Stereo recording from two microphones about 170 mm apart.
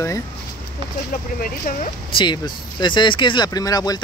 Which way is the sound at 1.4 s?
55° left (ahead or behind).